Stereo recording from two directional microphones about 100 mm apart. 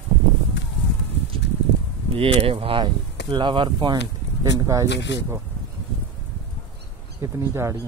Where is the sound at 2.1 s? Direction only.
70° right (ahead or behind).